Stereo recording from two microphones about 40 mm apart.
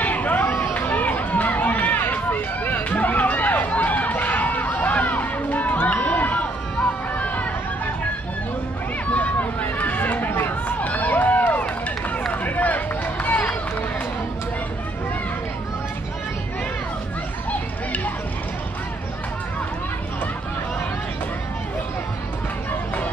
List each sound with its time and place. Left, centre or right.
0.0 s chatter: left
4.6 s music: left
9.0 s run: left
17.5 s children playing: left